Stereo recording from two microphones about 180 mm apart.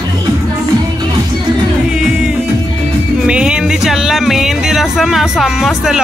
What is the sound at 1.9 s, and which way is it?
Music, 5° right (ahead or behind).